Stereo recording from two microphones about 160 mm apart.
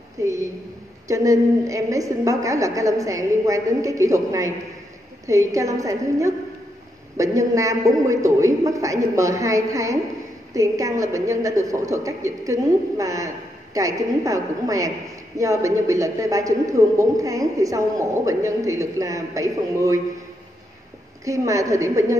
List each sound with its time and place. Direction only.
0.2 s a man's voice: 20° right (ahead or behind)
21.2 s a man's voice: 20° right (ahead or behind)